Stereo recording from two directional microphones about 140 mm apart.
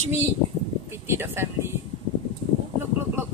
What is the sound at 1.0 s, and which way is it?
Speech, 15° right (ahead or behind).